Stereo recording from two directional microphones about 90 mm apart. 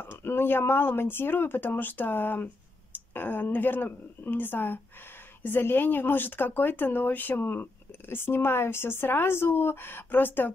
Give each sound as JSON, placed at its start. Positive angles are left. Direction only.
{"t": 0.0, "sound": "speech", "side_deg": 25}